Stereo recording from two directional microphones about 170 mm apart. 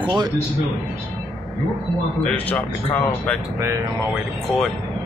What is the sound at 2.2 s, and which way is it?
Speech, 10° left (ahead or behind).